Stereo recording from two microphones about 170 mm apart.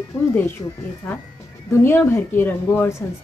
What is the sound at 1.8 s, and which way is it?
A woman's voice, 15° left (ahead or behind).